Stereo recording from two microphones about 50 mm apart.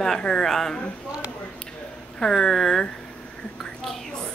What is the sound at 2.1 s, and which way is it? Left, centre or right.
Speech, centre.